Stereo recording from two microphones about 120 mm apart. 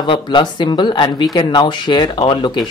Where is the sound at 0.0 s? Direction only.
40° left (ahead or behind).